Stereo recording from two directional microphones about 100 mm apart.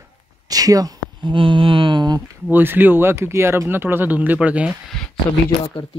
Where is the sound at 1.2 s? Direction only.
55° right (ahead or behind).